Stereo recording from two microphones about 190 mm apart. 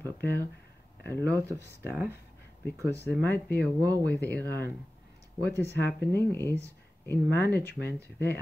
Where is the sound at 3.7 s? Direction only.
20° right (ahead or behind).